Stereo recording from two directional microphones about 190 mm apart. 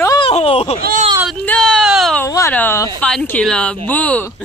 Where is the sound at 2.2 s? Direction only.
15° left (ahead or behind).